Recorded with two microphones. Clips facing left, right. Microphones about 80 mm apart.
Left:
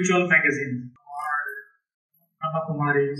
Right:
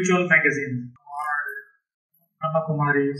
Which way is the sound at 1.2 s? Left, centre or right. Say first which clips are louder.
Even; centre.